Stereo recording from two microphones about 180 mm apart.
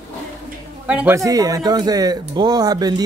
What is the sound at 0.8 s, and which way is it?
A man's voice, 10° right (ahead or behind).